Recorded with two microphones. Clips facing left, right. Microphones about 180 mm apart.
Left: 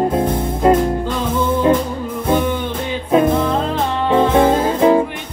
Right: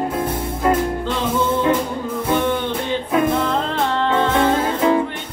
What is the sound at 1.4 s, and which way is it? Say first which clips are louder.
Music: left 5 dB; 10° left (ahead or behind).